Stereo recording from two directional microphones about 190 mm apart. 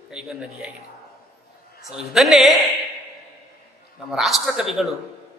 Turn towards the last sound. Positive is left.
turn(degrees=0)  # may be behind; listen again after turning